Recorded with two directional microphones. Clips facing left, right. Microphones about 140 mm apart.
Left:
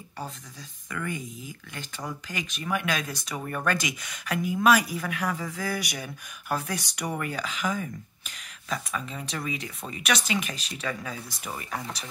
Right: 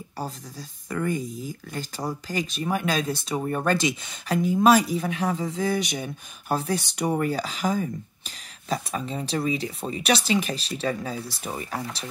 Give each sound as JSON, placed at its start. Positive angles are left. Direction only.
{"t": 0.2, "sound": "speech", "side_deg": -35}